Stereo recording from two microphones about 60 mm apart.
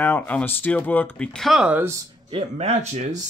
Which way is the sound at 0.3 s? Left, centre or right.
Left.